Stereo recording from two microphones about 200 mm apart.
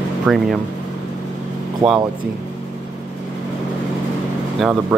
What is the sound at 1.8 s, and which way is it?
Speech, 20° right (ahead or behind).